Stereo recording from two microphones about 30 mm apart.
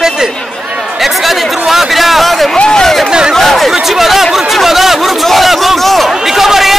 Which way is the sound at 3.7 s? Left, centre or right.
Centre.